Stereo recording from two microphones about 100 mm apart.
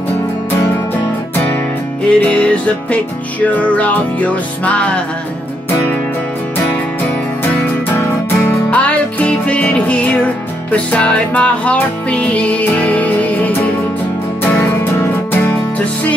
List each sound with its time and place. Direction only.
2.0 s music: 10° left (ahead or behind)
8.5 s music: 15° left (ahead or behind)
14.6 s music: 20° left (ahead or behind)